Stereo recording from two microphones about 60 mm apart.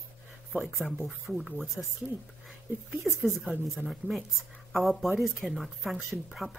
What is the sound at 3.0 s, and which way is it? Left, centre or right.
A woman's voice, centre.